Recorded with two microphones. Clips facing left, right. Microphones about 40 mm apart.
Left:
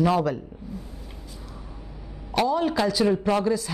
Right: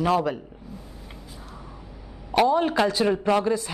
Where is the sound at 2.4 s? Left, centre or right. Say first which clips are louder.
Right 2 dB; right.